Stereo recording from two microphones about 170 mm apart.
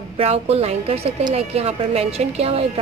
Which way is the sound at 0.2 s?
35° right (ahead or behind).